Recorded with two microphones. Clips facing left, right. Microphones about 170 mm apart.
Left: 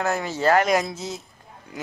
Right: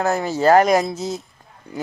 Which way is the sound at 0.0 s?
40° right (ahead or behind).